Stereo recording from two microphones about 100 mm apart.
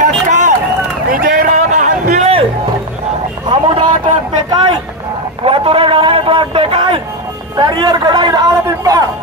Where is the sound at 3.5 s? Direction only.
55° right (ahead or behind).